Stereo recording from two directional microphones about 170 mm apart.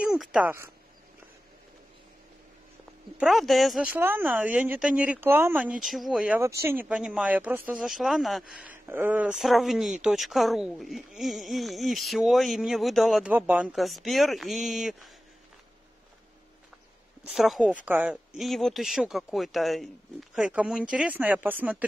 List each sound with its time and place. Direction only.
0.0 s speech: 5° right (ahead or behind)
3.2 s speech: centre (ahead or behind)
3.9 s speech: 10° right (ahead or behind)
8.8 s speech: 15° right (ahead or behind)
17.3 s speech: centre (ahead or behind)